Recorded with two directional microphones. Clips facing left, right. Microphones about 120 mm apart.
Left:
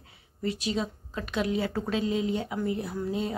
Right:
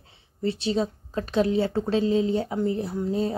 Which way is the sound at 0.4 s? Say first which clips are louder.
Right 5 dB; 30° right (ahead or behind).